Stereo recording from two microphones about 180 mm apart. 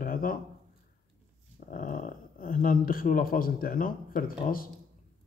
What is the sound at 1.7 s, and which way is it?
Speech, 50° left (ahead or behind).